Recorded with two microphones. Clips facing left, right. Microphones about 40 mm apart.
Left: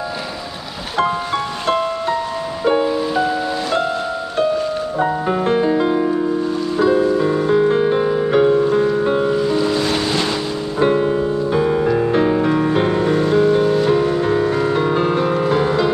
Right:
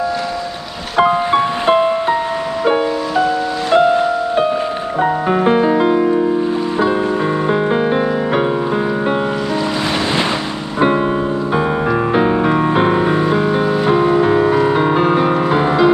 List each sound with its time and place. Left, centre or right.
1.3 s music: right
10.8 s music: right